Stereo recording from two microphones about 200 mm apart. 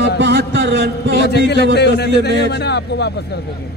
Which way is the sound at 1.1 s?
55° left (ahead or behind).